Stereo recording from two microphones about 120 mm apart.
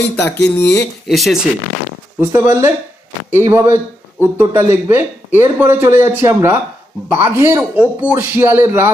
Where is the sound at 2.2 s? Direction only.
15° right (ahead or behind).